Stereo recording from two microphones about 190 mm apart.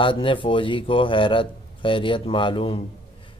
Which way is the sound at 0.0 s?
25° left (ahead or behind).